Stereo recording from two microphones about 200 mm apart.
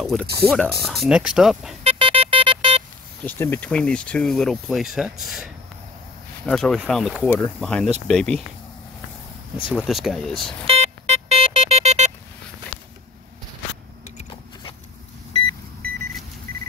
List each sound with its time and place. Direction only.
0.0 s speech: centre (ahead or behind)
1.8 s music: 30° right (ahead or behind)
3.3 s speech: 10° left (ahead or behind)
9.7 s speech: centre (ahead or behind)
10.7 s a sound: 30° right (ahead or behind)